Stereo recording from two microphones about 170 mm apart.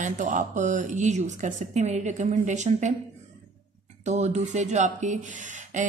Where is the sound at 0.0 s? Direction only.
50° right (ahead or behind).